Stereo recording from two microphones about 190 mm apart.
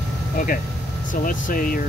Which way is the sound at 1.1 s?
45° left (ahead or behind).